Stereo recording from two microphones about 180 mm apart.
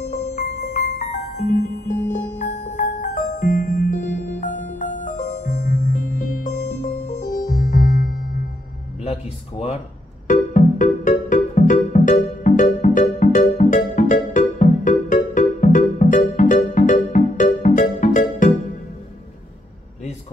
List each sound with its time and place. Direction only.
0.7 s music: 50° left (ahead or behind)
9.0 s music: 35° left (ahead or behind)
10.2 s music: 45° left (ahead or behind)